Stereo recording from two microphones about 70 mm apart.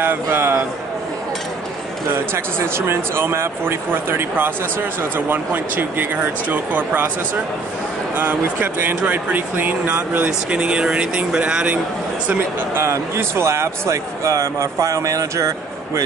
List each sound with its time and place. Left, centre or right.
0.0 s speech: right
2.1 s speech: right
8.2 s speech: right
12.7 s speech: right